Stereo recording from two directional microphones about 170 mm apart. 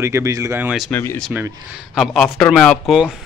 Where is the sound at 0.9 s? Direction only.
10° left (ahead or behind).